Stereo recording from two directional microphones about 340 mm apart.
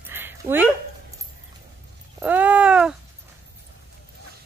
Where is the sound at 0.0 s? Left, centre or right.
Centre.